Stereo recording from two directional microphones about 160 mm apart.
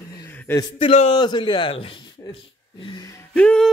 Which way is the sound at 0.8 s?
35° left (ahead or behind).